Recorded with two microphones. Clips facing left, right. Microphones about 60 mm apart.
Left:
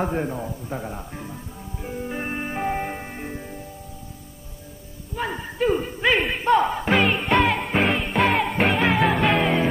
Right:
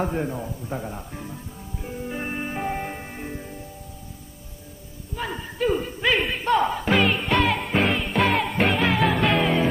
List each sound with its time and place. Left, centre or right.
0.0 s a man's voice: centre
2.0 s music: centre
2.2 s music: centre
5.3 s music: centre